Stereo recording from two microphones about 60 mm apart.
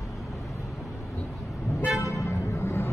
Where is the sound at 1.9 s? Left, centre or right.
Left.